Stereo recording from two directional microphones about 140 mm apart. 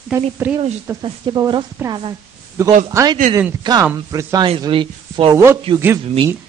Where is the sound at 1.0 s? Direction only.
35° right (ahead or behind).